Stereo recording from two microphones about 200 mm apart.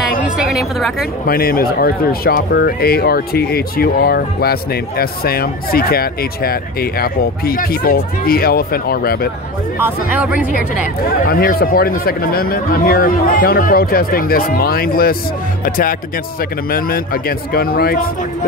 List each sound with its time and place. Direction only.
0.4 s a woman's voice: centre (ahead or behind)
1.2 s speech: 50° left (ahead or behind)
9.8 s speech: 10° right (ahead or behind)
11.1 s speech: 50° left (ahead or behind)